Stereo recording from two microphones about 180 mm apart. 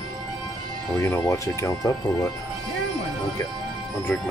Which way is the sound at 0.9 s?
15° left (ahead or behind).